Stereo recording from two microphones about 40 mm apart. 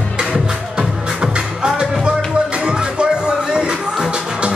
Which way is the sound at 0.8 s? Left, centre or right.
Right.